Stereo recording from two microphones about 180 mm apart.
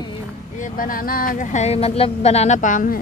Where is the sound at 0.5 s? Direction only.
45° left (ahead or behind).